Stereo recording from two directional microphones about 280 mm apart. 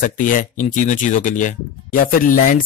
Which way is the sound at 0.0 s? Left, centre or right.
Left.